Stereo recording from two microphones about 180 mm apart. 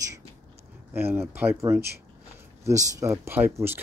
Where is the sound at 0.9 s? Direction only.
10° right (ahead or behind).